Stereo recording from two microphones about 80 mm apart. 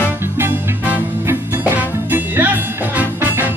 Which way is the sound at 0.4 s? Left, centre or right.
Right.